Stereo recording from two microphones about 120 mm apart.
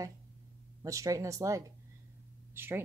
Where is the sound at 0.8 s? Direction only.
25° right (ahead or behind).